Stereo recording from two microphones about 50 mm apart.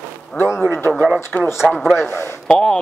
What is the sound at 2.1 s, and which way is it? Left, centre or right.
Speech, left.